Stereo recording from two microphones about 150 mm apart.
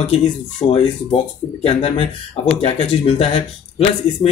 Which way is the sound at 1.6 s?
40° left (ahead or behind).